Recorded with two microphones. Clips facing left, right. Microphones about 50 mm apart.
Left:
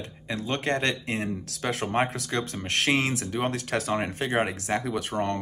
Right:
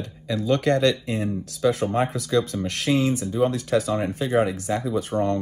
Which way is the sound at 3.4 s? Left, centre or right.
Left.